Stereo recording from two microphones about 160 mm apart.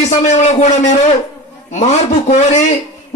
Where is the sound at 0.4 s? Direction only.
45° left (ahead or behind).